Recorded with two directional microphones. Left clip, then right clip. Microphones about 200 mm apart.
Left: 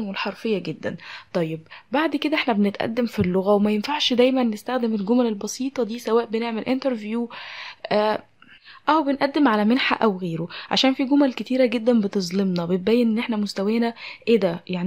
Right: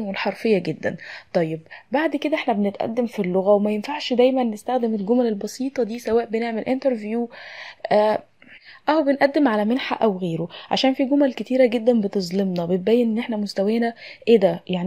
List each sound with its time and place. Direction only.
0.1 s speech: 10° right (ahead or behind)